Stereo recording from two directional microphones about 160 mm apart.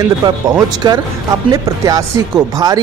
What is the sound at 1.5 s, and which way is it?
Speech, 20° right (ahead or behind).